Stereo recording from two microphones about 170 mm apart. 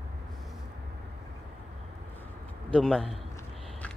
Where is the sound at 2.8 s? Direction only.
Centre (ahead or behind).